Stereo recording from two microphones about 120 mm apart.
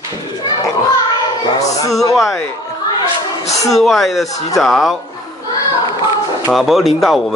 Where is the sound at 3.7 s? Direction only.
Centre (ahead or behind).